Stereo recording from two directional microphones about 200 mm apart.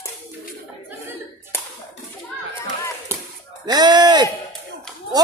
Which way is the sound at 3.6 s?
20° right (ahead or behind).